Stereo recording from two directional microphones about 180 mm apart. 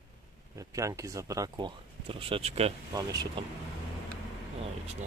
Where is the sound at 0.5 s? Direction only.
20° right (ahead or behind); by 2.7 s 35° right (ahead or behind).